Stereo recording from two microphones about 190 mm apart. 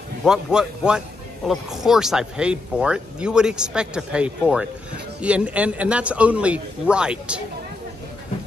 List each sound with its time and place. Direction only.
0.2 s a man's voice: 5° right (ahead or behind)